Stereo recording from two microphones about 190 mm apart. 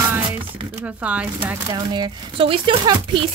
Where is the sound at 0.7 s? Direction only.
5° right (ahead or behind).